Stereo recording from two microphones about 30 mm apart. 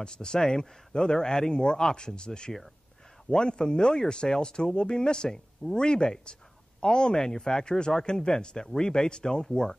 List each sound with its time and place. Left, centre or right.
0.0 s speech: left